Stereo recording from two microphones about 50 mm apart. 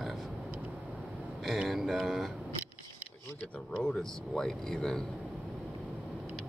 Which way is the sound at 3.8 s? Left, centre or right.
Centre.